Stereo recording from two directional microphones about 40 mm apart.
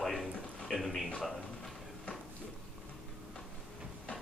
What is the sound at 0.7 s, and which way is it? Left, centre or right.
Speech, centre.